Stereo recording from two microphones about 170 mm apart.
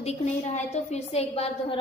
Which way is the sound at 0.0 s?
40° left (ahead or behind).